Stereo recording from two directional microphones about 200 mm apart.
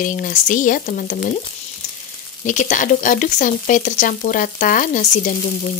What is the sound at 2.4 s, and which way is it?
Speech, 40° left (ahead or behind).